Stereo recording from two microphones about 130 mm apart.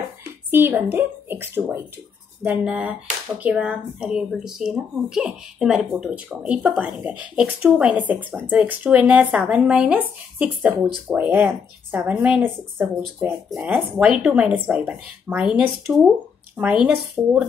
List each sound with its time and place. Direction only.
0.5 s speech: 15° right (ahead or behind)
16.8 s speech: centre (ahead or behind)